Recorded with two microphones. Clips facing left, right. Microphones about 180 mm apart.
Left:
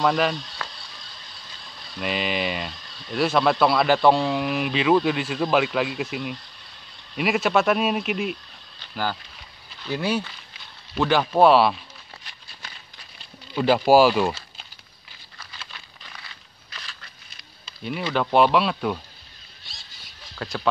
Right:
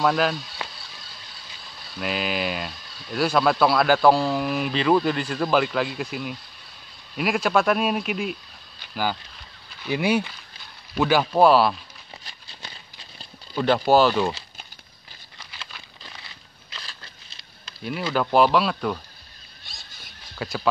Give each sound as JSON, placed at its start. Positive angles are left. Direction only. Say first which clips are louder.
{"t": 0.0, "sound": "a sound", "louder": "even", "side_deg": -5}
{"t": 1.6, "sound": "speech", "louder": "even", "side_deg": 0}
{"t": 13.6, "sound": "speech", "louder": "left 2 dB", "side_deg": 5}
{"t": 16.7, "sound": "a sound", "louder": "right 1 dB", "side_deg": -30}
{"t": 17.8, "sound": "speech", "louder": "even", "side_deg": 0}
{"t": 19.6, "sound": "squeal", "louder": "right 2 dB", "side_deg": -50}
{"t": 20.3, "sound": "speech", "louder": "right 1 dB", "side_deg": -5}